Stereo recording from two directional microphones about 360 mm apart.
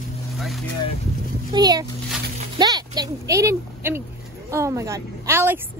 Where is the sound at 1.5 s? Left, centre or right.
Centre.